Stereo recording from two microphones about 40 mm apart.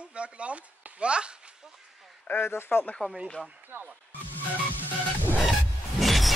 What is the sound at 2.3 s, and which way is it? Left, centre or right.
Speech, left.